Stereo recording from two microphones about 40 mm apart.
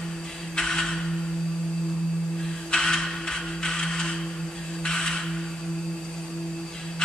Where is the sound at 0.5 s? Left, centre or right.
Centre.